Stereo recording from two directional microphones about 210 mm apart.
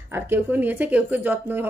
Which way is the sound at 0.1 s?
10° right (ahead or behind).